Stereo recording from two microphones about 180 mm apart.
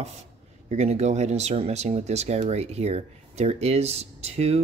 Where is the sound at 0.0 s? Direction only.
35° right (ahead or behind).